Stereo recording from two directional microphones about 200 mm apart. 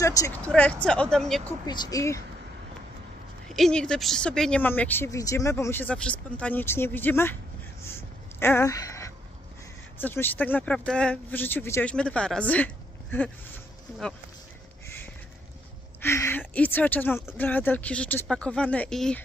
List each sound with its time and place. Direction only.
0.0 s speech: 15° left (ahead or behind)
1.7 s speech: 20° left (ahead or behind)
3.5 s speech: 5° left (ahead or behind)
7.8 s a sound: 10° left (ahead or behind)
9.9 s speech: 10° left (ahead or behind)
16.0 s speech: 10° left (ahead or behind)